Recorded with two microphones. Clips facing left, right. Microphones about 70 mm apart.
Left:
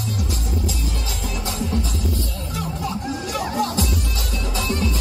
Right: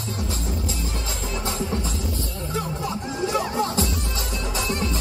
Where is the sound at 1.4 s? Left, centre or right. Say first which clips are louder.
Left 2 dB; right.